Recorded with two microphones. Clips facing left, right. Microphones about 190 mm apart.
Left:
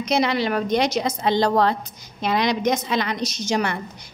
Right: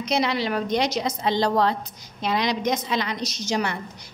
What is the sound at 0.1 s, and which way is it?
A woman's voice, 55° left (ahead or behind).